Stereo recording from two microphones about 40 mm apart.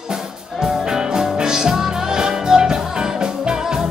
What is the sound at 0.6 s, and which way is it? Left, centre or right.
Music, centre.